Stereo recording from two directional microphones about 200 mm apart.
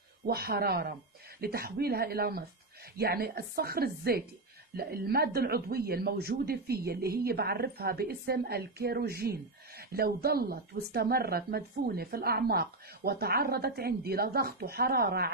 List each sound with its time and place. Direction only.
0.3 s speech: 50° right (ahead or behind)